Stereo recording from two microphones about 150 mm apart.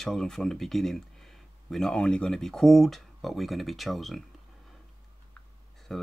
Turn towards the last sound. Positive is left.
turn(degrees=5)  # may be behind; listen again after turning